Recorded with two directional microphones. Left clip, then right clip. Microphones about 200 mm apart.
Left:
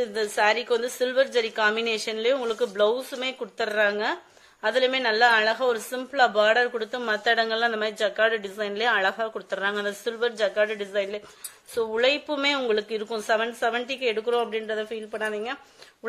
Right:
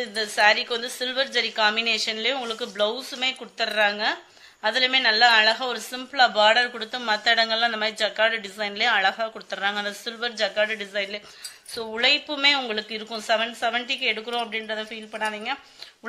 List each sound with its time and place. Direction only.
0.0 s speech: 55° left (ahead or behind)